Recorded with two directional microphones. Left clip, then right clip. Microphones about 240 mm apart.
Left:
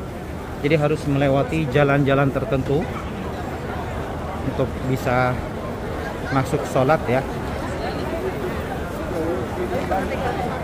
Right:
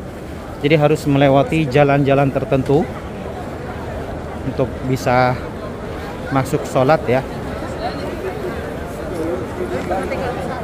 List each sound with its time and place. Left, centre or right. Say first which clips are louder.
0.6 s a man's voice: right 5 dB; centre
4.9 s speech: right 6 dB; centre
6.3 s speech: right 4 dB; centre